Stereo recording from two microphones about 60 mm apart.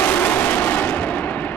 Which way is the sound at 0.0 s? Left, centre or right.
Left.